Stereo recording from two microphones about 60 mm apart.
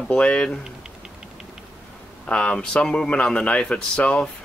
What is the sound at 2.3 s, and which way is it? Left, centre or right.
Speech, centre.